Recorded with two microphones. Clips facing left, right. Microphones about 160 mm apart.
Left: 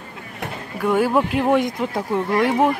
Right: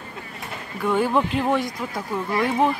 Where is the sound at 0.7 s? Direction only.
10° left (ahead or behind).